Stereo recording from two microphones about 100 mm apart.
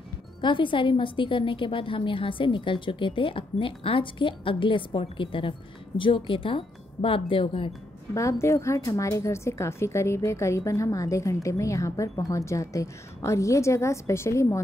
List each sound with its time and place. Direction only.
0.4 s a woman's voice: 55° left (ahead or behind)
8.1 s a woman's voice: 30° left (ahead or behind)